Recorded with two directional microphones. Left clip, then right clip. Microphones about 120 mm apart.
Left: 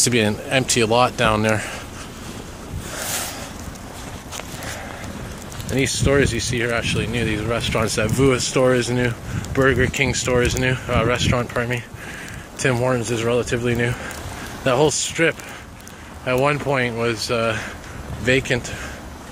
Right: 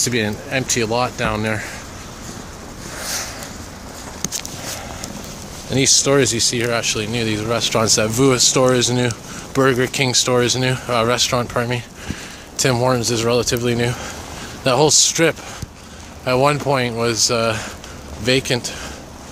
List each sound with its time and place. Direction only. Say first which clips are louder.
0.0 s speech: left 1 dB; 30° left (ahead or behind)
5.7 s speech: right 4 dB; 30° right (ahead or behind)
16.3 s speech: right 3 dB; 30° right (ahead or behind)